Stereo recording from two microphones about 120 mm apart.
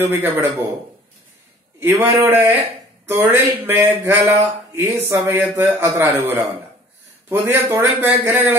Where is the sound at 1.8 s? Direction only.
25° right (ahead or behind).